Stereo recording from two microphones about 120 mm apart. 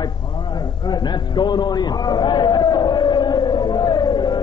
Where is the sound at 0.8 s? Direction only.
35° left (ahead or behind).